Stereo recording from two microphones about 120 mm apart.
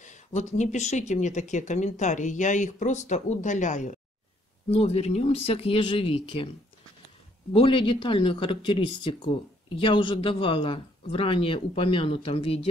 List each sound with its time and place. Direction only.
0.0 s speech: 90° left
4.6 s speech: 55° left (ahead or behind)
7.5 s a man's voice: 45° left (ahead or behind)